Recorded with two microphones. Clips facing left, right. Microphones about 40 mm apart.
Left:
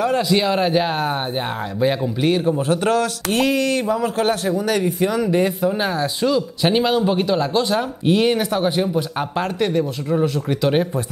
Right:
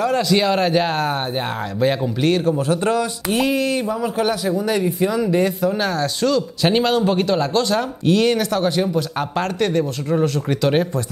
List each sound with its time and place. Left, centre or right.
0.1 s speech: centre
2.7 s speech: left
5.7 s speech: left
7.5 s speech: left
9.3 s speech: centre